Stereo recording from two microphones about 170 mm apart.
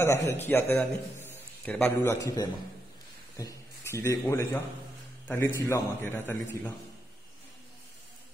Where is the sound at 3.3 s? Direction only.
20° left (ahead or behind).